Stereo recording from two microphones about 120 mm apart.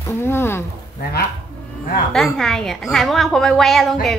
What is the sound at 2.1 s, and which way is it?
A woman's voice, 5° left (ahead or behind).